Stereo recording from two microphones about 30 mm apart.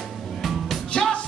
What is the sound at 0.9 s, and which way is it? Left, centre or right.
Music, left.